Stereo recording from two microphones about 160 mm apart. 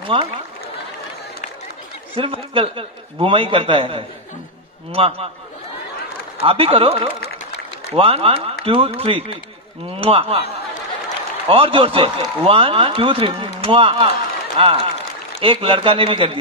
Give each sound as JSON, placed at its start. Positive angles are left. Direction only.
{"t": 0.0, "sound": "speech", "side_deg": -35}
{"t": 2.1, "sound": "speech", "side_deg": -35}
{"t": 6.4, "sound": "speech", "side_deg": -35}
{"t": 11.4, "sound": "speech", "side_deg": -35}